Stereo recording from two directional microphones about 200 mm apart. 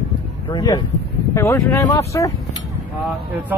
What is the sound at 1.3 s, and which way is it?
Speech, 15° left (ahead or behind).